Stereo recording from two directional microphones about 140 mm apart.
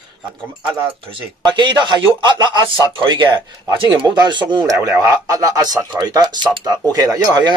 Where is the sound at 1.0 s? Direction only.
35° right (ahead or behind).